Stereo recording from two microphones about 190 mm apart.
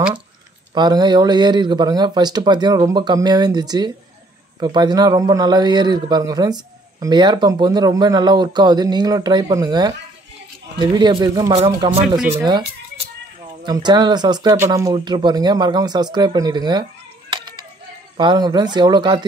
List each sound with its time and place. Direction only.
0.7 s speech: 20° right (ahead or behind)
11.5 s speech: 30° right (ahead or behind)
12.2 s speech: 10° right (ahead or behind)
13.7 s speech: 20° right (ahead or behind)
18.1 s speech: 25° right (ahead or behind)